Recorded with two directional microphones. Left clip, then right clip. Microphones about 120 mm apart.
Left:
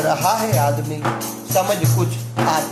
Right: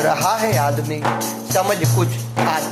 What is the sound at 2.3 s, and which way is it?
Music, 15° right (ahead or behind).